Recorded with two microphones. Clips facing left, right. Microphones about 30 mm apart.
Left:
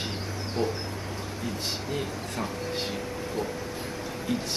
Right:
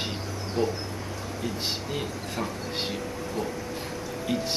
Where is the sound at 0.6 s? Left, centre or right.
Centre.